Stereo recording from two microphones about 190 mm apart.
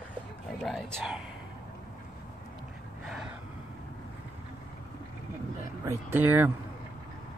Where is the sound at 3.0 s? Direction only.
5° right (ahead or behind).